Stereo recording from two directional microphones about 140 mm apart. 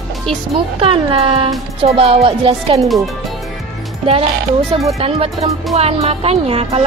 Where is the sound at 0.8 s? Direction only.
45° right (ahead or behind).